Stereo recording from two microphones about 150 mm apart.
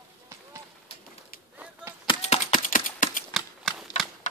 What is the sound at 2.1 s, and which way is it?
Typing, 45° left (ahead or behind).